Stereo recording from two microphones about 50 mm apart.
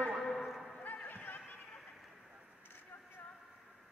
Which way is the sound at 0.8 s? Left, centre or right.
Left.